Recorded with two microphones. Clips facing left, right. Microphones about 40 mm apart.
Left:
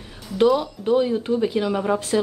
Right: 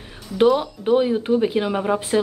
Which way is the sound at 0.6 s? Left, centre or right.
Right.